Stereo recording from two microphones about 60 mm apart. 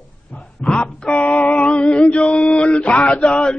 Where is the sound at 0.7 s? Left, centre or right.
Centre.